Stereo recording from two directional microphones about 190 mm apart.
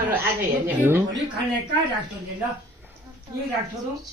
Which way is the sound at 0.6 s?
10° right (ahead or behind).